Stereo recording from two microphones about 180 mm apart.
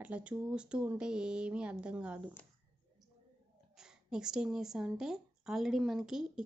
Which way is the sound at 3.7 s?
5° right (ahead or behind).